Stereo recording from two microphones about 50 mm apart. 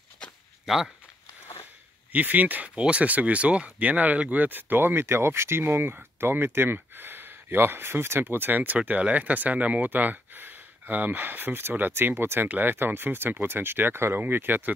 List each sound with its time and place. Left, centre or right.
0.7 s speech: centre
2.1 s speech: right